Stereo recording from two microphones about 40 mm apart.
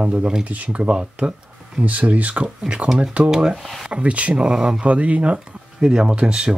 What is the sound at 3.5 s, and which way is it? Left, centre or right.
Speech, centre.